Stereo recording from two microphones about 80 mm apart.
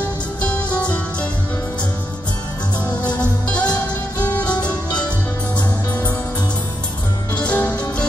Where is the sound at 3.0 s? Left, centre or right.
Left.